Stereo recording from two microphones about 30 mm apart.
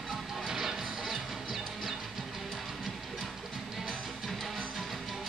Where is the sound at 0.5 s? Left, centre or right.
Centre.